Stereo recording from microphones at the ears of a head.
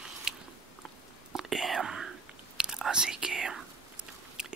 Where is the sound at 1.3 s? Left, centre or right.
Right.